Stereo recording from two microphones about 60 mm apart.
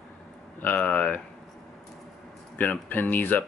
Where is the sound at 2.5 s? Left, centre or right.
Left.